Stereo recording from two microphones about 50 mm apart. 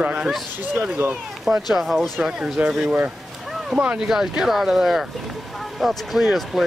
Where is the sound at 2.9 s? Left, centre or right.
Right.